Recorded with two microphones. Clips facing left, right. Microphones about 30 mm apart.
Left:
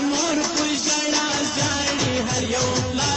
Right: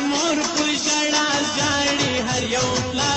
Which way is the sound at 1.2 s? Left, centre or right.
Right.